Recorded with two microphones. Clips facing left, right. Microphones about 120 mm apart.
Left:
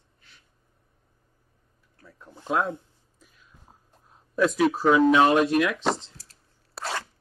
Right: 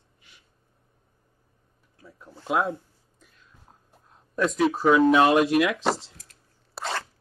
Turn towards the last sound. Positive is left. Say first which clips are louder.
# right 1 dB
turn(degrees=0)  # may be behind; listen again after turning